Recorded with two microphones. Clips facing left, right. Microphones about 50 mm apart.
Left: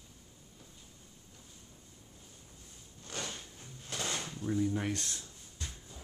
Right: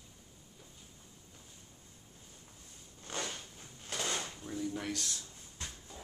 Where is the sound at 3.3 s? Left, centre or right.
Centre.